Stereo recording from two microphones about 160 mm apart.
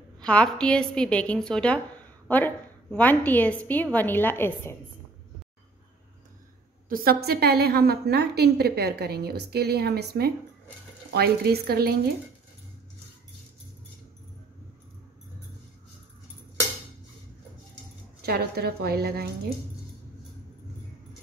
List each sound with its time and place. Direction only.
0.2 s a woman's voice: 5° left (ahead or behind)
6.9 s a woman's voice: 65° right (ahead or behind)
18.2 s a woman's voice: 75° right (ahead or behind)